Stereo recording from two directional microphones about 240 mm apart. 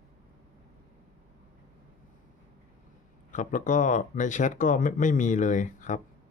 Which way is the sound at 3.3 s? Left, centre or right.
Left.